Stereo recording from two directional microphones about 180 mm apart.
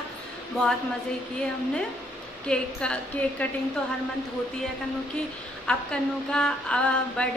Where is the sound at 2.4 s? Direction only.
5° left (ahead or behind).